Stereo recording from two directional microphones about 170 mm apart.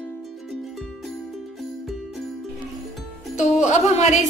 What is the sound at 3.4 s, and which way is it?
Music, 40° left (ahead or behind).